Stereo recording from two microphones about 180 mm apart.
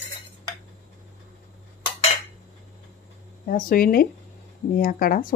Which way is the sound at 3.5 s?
50° left (ahead or behind).